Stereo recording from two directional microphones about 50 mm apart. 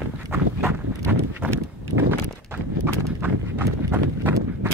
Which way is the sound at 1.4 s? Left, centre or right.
Right.